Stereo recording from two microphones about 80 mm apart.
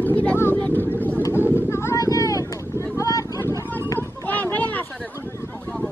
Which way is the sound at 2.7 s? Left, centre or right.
Left.